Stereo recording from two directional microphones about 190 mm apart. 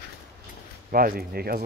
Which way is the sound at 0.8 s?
50° right (ahead or behind).